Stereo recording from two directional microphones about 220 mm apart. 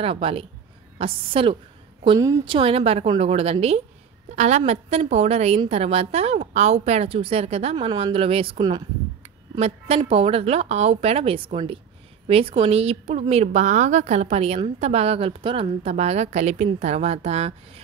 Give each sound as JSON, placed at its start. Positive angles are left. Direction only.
{"t": 0.0, "sound": "a woman's voice", "side_deg": -25}